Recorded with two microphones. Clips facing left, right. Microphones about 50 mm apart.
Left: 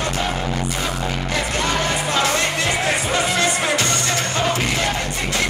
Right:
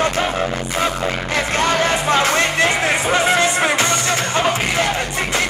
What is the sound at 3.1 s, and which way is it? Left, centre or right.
Music, right.